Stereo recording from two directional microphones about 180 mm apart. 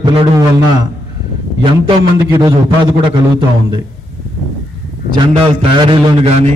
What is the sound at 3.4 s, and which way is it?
Speech, 25° right (ahead or behind).